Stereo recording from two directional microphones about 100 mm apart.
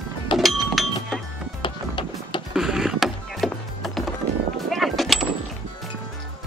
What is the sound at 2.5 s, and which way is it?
Music, 5° right (ahead or behind).